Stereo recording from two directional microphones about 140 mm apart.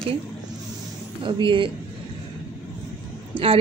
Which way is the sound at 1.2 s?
35° right (ahead or behind).